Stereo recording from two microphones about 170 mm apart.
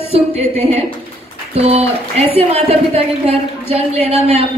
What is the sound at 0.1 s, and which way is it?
A woman's voice, 35° right (ahead or behind).